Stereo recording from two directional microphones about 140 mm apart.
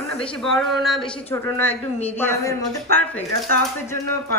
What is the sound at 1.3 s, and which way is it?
Speech, 15° left (ahead or behind).